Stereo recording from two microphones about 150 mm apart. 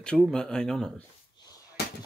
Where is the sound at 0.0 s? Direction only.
5° left (ahead or behind).